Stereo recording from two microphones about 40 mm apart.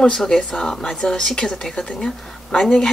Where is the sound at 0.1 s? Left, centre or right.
Centre.